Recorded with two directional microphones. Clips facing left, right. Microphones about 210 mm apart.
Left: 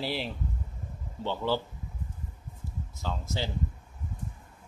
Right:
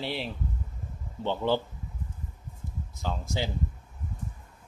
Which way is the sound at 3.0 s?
15° right (ahead or behind).